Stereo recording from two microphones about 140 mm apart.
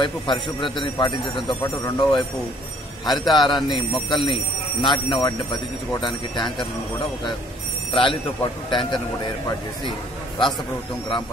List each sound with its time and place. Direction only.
0.0 s speech: 35° left (ahead or behind)
7.9 s a man's voice: 35° left (ahead or behind)